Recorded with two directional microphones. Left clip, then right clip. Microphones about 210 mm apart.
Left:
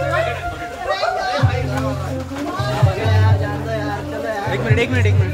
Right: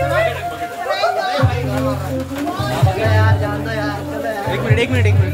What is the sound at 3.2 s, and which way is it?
Music, 20° right (ahead or behind).